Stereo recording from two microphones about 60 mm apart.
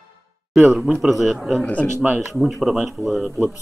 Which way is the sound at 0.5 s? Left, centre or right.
Centre.